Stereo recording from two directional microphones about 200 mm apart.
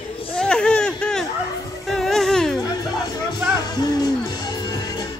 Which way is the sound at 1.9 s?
Centre (ahead or behind).